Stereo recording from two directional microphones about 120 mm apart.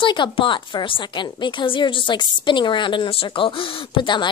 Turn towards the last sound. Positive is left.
turn(degrees=45)  # may be behind; listen again after turning